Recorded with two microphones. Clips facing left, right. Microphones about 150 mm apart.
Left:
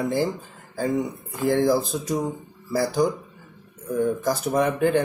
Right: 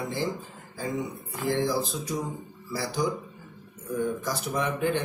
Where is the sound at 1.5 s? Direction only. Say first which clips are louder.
Left 6 dB; 45° left (ahead or behind).